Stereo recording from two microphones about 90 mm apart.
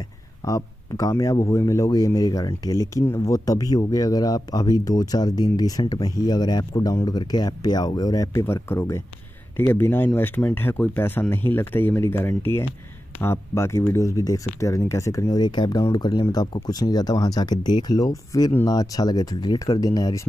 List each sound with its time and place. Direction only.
0.5 s speech: 40° left (ahead or behind)
8.3 s speech: 30° left (ahead or behind)